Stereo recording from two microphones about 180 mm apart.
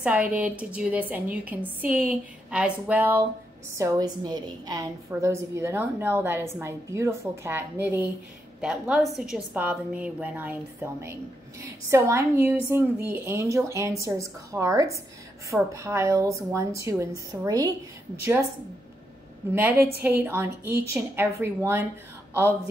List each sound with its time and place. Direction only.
0.0 s a woman's voice: 10° right (ahead or behind)
19.5 s a woman's voice: 10° right (ahead or behind)